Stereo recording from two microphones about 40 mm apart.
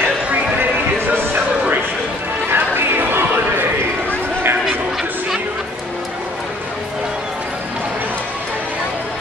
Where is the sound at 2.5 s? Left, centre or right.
Right.